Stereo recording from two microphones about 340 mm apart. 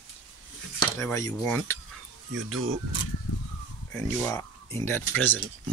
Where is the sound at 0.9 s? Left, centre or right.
Centre.